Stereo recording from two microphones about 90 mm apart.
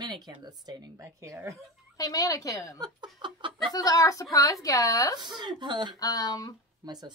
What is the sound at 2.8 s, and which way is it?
Speech, 55° right (ahead or behind).